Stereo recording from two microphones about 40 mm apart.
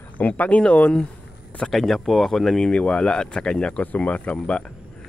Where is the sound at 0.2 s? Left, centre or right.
Left.